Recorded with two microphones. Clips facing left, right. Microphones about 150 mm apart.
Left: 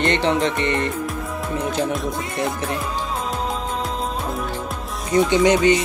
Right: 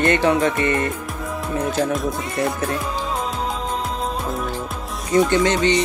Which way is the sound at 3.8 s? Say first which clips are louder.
Even; centre (ahead or behind).